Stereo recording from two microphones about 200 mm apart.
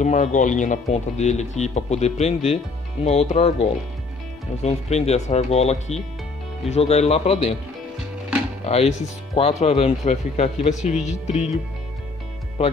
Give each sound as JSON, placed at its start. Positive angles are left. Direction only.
{"t": 0.0, "sound": "speech", "side_deg": 35}
{"t": 8.6, "sound": "speech", "side_deg": 30}